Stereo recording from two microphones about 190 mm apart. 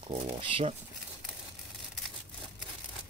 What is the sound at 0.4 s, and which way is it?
Speech, 30° right (ahead or behind).